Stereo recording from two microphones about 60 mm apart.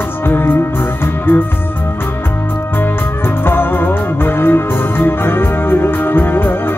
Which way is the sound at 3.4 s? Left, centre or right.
Left.